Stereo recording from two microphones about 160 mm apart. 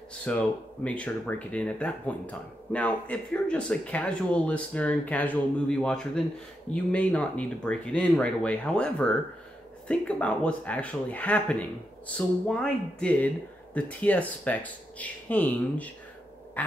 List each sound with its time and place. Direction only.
0.3 s speech: 10° left (ahead or behind)